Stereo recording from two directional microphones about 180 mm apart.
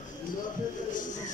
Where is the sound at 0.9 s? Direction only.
45° left (ahead or behind).